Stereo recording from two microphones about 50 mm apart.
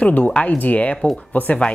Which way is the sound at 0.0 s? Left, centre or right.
Left.